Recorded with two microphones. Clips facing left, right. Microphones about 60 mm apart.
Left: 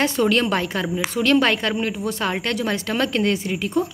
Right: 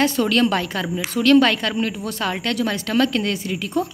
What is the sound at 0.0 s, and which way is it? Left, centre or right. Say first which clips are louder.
A woman's voice: right 1 dB; left.